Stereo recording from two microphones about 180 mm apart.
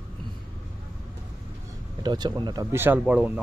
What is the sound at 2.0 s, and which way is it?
Speech, 25° right (ahead or behind).